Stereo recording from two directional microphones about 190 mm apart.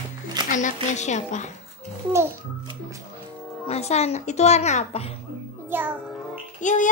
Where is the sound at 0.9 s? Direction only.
40° left (ahead or behind).